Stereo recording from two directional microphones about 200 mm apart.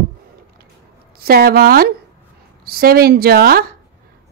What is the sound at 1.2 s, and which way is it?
A woman's voice, 50° right (ahead or behind).